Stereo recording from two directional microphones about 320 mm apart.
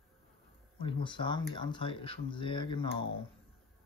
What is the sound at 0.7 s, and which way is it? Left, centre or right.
Speech, centre.